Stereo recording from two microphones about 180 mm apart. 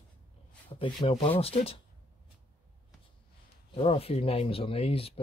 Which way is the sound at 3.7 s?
30° left (ahead or behind).